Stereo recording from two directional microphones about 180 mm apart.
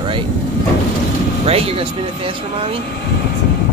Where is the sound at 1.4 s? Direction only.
35° right (ahead or behind).